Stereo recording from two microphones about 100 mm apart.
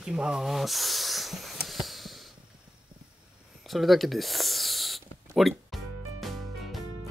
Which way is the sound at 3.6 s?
Centre (ahead or behind).